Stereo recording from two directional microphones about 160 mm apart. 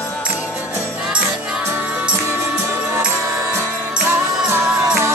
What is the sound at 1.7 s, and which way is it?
Music, 15° right (ahead or behind).